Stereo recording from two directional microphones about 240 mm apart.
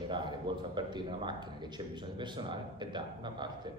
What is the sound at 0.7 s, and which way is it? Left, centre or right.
A man's voice, centre.